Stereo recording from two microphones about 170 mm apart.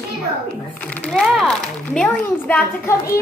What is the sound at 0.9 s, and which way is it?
A woman's voice, 5° left (ahead or behind).